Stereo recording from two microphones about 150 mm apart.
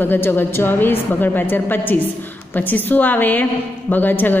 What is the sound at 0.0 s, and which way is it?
A woman's voice, 15° left (ahead or behind).